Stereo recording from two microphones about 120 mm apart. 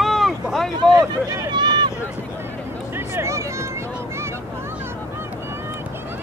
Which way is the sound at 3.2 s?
25° right (ahead or behind).